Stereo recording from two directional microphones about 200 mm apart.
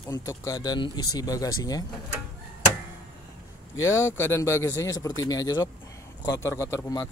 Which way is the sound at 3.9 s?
15° left (ahead or behind).